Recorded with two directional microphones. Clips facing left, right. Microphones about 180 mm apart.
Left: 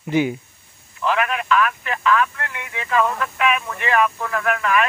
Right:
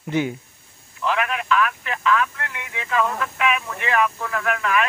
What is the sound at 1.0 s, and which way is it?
Speech, 50° left (ahead or behind).